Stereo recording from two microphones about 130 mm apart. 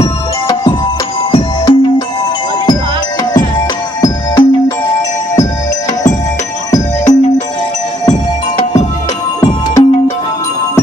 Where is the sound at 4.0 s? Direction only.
30° left (ahead or behind).